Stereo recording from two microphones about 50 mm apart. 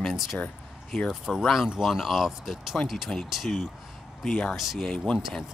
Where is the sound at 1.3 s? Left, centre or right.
Centre.